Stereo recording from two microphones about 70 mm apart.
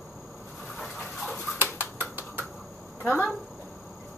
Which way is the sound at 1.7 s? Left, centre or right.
Right.